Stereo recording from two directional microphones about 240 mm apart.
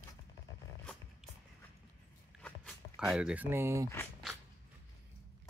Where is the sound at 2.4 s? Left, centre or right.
Centre.